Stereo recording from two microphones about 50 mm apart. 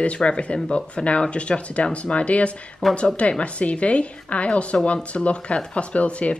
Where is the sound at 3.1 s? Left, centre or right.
Left.